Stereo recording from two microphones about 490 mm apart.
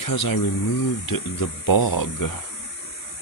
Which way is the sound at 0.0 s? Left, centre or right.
Left.